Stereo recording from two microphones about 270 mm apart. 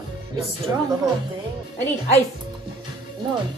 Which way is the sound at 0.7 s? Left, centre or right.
Centre.